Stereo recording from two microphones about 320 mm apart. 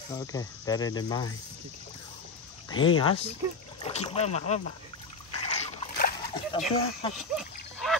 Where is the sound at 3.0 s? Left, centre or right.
Centre.